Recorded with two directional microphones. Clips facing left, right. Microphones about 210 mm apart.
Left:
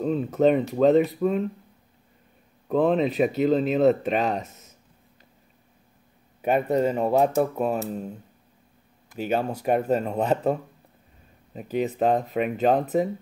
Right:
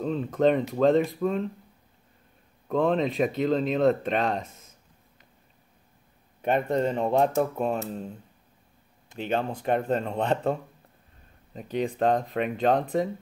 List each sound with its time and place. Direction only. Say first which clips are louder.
0.0 s speech: left 2 dB; 5° left (ahead or behind)
2.7 s speech: left 3 dB; 5° left (ahead or behind)
6.4 s speech: left 3 dB; 5° left (ahead or behind)
9.2 s speech: left 3 dB; 10° left (ahead or behind)